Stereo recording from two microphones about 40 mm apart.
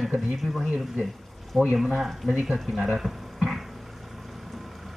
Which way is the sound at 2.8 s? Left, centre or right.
Centre.